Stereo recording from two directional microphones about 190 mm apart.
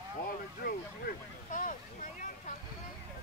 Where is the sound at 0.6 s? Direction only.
50° left (ahead or behind).